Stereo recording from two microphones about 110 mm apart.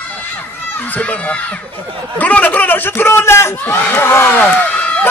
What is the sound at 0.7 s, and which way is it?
A man's voice, 15° left (ahead or behind).